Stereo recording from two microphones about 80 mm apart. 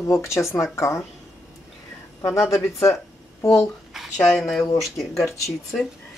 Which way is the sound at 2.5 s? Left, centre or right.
Left.